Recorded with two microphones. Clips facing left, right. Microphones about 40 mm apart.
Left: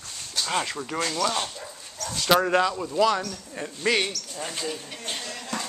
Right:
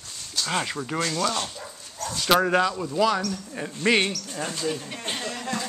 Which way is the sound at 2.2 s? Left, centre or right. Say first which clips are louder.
Even; centre.